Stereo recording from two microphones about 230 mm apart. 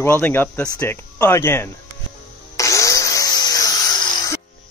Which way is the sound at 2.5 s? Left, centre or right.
Centre.